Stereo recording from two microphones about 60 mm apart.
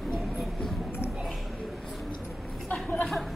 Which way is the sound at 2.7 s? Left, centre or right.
Left.